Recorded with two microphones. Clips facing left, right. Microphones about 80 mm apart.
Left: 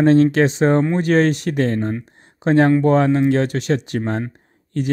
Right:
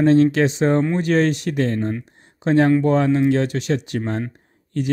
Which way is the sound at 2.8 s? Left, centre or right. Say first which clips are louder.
Left 2 dB; left.